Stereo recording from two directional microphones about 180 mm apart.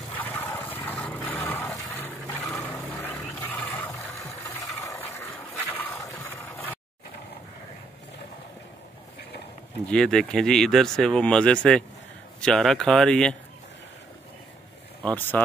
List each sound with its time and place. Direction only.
0.2 s a sound: 10° left (ahead or behind)
9.8 s speech: 5° left (ahead or behind)
15.0 s speech: 10° left (ahead or behind)